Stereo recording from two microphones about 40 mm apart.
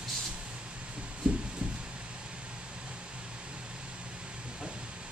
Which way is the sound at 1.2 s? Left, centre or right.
Right.